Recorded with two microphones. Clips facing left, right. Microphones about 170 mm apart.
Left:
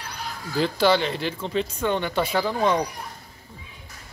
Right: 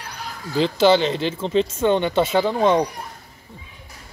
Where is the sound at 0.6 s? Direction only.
25° right (ahead or behind).